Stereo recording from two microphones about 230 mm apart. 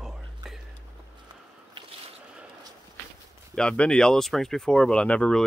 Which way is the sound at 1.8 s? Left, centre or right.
Right.